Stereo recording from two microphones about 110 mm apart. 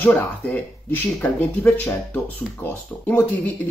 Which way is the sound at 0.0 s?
15° left (ahead or behind).